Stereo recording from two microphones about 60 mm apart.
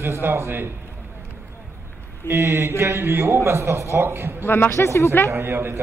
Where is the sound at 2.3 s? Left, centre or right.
Right.